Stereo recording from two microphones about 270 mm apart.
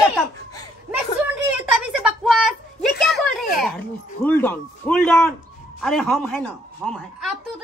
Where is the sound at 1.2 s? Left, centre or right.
Centre.